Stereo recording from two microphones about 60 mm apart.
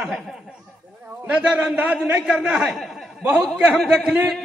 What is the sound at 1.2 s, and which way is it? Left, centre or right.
A man's voice, right.